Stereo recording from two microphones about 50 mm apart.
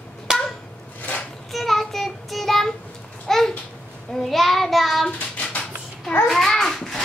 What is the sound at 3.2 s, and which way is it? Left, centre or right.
Babbling, centre.